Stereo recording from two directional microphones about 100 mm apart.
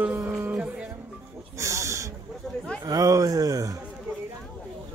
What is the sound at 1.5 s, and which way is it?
Owl, 30° right (ahead or behind).